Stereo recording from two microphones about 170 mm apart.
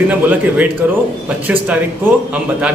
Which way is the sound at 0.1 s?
10° right (ahead or behind).